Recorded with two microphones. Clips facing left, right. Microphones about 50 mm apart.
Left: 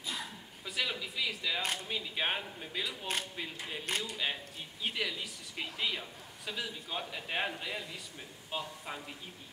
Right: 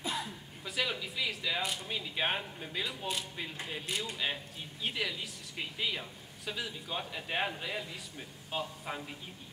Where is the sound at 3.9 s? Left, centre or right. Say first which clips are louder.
Left 2 dB; left.